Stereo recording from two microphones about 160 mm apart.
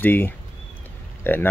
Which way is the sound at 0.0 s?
10° left (ahead or behind).